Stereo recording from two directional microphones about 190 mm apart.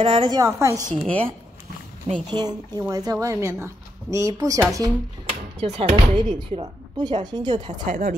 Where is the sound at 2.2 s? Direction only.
20° right (ahead or behind).